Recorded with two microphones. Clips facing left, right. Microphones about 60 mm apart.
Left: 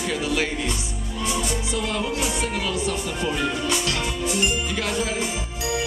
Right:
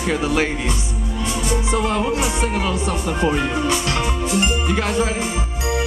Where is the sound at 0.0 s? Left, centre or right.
Right.